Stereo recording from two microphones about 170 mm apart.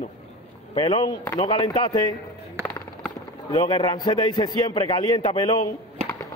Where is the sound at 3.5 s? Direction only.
25° left (ahead or behind).